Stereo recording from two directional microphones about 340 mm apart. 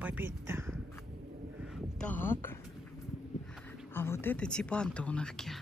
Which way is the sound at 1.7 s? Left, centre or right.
Centre.